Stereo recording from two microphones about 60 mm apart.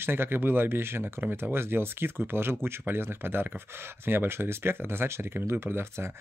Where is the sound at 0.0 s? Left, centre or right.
Right.